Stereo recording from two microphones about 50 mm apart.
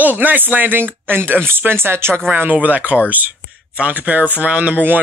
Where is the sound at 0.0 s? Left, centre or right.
Right.